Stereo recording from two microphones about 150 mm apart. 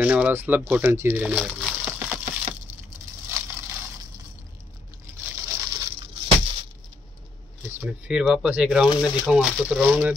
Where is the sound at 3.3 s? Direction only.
15° right (ahead or behind).